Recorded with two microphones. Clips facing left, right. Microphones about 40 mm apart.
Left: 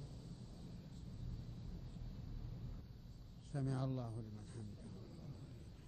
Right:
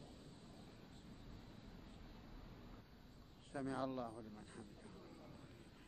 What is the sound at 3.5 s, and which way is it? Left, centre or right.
A man's voice, right.